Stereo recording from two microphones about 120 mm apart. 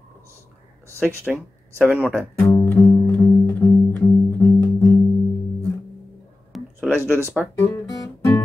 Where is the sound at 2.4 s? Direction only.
25° left (ahead or behind).